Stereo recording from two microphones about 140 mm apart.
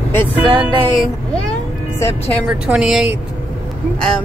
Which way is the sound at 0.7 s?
35° right (ahead or behind).